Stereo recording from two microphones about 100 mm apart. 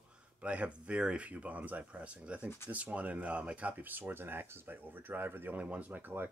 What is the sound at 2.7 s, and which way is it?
Speech, 15° right (ahead or behind).